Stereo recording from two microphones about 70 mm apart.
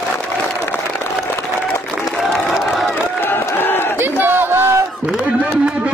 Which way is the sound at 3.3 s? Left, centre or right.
Left.